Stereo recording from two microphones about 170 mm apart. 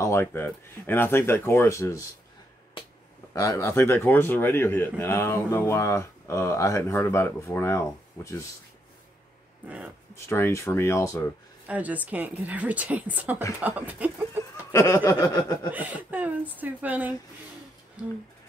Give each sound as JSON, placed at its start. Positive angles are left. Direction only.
{"t": 0.0, "sound": "a man's voice", "side_deg": 15}
{"t": 3.3, "sound": "a man's voice", "side_deg": 20}
{"t": 10.1, "sound": "a man's voice", "side_deg": 15}
{"t": 11.6, "sound": "a woman's voice", "side_deg": -10}
{"t": 14.7, "sound": "a sound", "side_deg": 20}
{"t": 15.7, "sound": "a woman's voice", "side_deg": -10}